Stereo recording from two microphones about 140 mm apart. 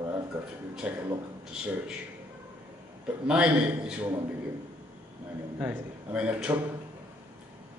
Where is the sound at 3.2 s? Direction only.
5° right (ahead or behind).